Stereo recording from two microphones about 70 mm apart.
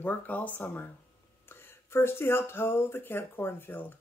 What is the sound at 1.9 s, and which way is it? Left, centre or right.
Speech, left.